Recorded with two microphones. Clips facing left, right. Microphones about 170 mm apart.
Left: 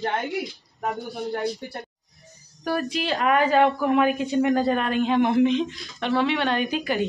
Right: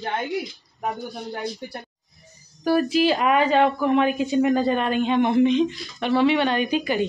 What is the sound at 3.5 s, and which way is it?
A woman's voice, 5° left (ahead or behind).